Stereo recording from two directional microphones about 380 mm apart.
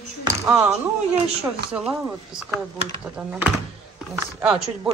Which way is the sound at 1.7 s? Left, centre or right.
Centre.